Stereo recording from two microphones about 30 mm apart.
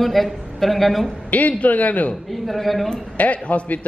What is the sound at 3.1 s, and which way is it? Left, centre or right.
Speech, left.